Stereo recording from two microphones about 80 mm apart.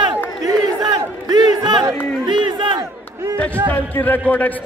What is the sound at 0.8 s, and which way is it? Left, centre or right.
A man's voice, right.